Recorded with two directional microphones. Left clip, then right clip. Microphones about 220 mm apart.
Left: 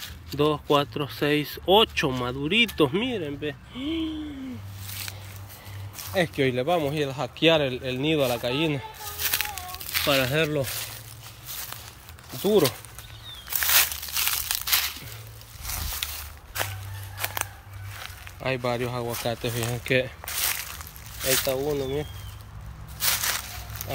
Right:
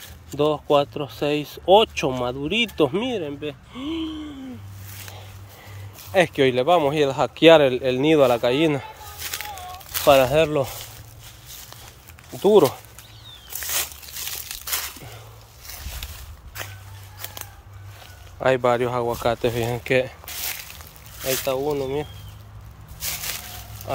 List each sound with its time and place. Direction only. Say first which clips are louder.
0.4 s speech: right 3 dB; centre (ahead or behind)
6.2 s speech: right 4 dB; 10° right (ahead or behind)
12.4 s speech: right 6 dB; 15° right (ahead or behind)
13.6 s walk: left 6 dB; 5° right (ahead or behind)
14.7 s crumpling: left 3 dB; 20° right (ahead or behind)
16.0 s walk: left 9 dB; centre (ahead or behind)
18.4 s speech: right 8 dB; 15° right (ahead or behind)
19.8 s a sound: right 1 dB; 5° right (ahead or behind)
21.2 s speech: right 1 dB; 10° right (ahead or behind)